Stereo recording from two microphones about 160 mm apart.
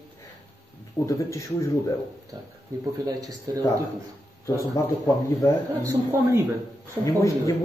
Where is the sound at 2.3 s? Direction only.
25° right (ahead or behind).